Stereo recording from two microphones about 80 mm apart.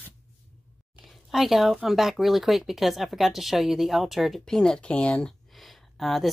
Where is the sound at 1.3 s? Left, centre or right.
Centre.